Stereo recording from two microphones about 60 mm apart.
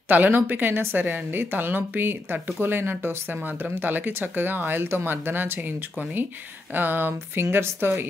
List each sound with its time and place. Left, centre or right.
0.1 s a woman's voice: right
6.7 s a woman's voice: right